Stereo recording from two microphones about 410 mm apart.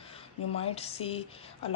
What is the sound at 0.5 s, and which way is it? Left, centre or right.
Speech, centre.